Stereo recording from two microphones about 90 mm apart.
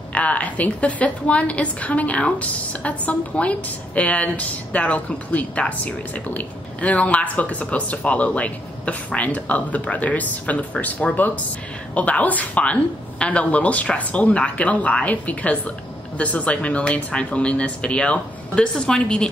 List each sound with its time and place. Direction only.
0.1 s a woman's voice: 15° left (ahead or behind)